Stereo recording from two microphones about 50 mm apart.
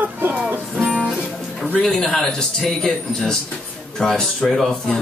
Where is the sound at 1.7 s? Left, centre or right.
Centre.